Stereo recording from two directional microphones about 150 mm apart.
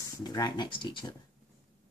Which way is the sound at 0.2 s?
25° left (ahead or behind).